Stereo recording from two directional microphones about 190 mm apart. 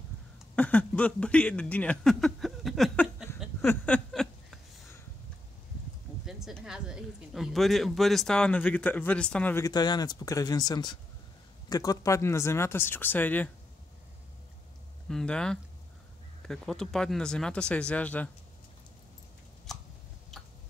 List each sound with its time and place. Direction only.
0.6 s speech: 5° left (ahead or behind)
3.6 s a sound: 5° left (ahead or behind)
6.2 s speech: centre (ahead or behind)
9.7 s speech: 20° left (ahead or behind)
15.0 s speech: 5° left (ahead or behind)
19.7 s a sound: centre (ahead or behind)